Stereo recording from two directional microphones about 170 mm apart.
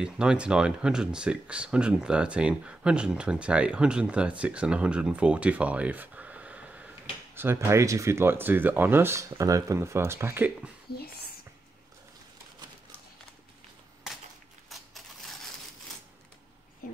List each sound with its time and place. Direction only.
0.0 s speech: 5° right (ahead or behind)
10.9 s speech: 70° left (ahead or behind)
14.7 s a sound: centre (ahead or behind)